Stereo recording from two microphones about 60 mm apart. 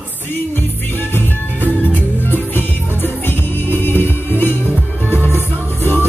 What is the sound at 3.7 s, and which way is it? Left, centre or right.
Music, left.